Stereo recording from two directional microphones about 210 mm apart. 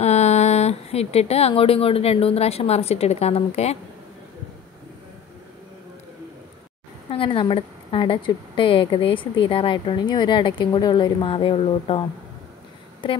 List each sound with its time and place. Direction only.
0.0 s speech: 30° left (ahead or behind)
7.1 s a woman's voice: 25° left (ahead or behind)